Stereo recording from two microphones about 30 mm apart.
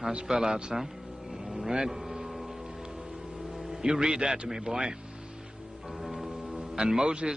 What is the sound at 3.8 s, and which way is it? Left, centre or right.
A man's voice, right.